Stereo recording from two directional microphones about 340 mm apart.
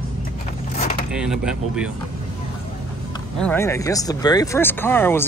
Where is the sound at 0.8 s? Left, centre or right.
Centre.